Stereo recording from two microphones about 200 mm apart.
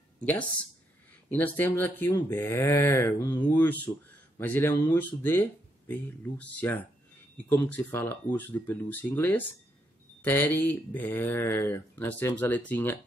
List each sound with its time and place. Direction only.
0.2 s speech: 5° left (ahead or behind)